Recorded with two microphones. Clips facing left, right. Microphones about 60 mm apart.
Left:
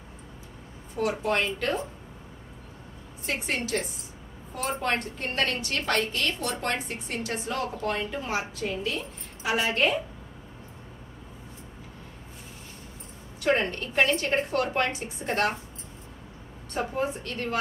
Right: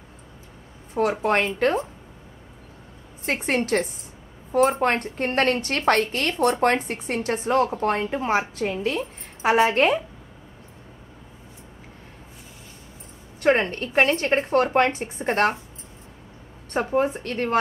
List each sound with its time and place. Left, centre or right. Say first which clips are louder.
0.9 s a woman's voice: right 5 dB; right
3.3 s a woman's voice: right 7 dB; right
13.4 s a woman's voice: right 5 dB; right
16.7 s a woman's voice: right 7 dB; right